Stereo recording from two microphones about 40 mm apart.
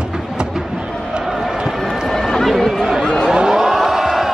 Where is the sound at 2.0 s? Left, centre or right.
Centre.